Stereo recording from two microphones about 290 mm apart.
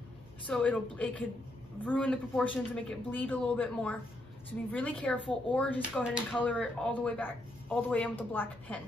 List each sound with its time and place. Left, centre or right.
0.5 s speech: centre